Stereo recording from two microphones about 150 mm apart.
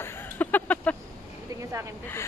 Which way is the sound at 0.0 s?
10° left (ahead or behind).